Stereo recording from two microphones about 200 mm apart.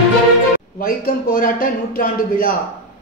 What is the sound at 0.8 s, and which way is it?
Speech, 45° left (ahead or behind).